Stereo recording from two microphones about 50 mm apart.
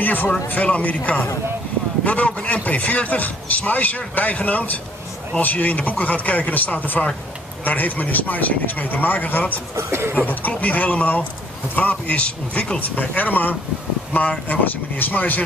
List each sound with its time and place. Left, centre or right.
0.0 s a man's voice: left
9.8 s speech: right
10.5 s a man's voice: left